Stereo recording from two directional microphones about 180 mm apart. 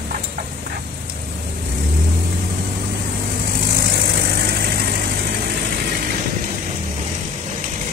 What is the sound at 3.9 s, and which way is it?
Vehicle, 55° right (ahead or behind).